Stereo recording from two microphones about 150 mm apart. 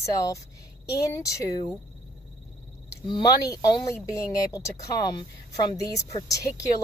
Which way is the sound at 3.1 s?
25° left (ahead or behind).